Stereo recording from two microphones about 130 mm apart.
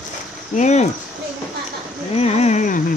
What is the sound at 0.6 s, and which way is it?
Speech, 60° left (ahead or behind).